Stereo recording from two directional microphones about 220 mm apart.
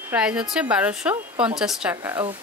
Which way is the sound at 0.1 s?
5° right (ahead or behind).